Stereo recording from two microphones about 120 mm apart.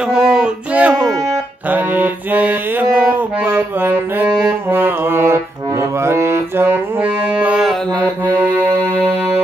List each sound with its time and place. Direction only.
0.0 s a sound: 5° right (ahead or behind)
0.9 s music: 5° left (ahead or behind)
1.7 s mantra: 15° right (ahead or behind)
4.6 s music: 20° right (ahead or behind)
7.9 s music: 10° left (ahead or behind)